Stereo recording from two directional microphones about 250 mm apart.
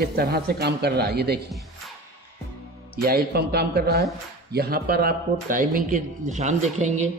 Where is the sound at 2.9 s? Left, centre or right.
Right.